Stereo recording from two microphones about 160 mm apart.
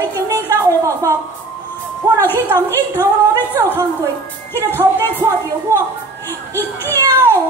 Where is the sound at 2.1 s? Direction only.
15° left (ahead or behind).